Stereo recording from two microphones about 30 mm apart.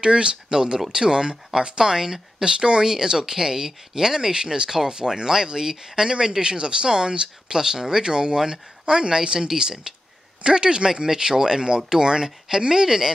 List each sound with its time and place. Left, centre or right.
0.0 s speech: right; by 6.0 s centre
6.0 s speech: right
11.1 s speech: centre